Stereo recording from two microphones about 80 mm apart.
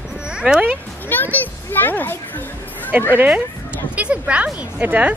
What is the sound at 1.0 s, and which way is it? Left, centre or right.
A child's voice, left.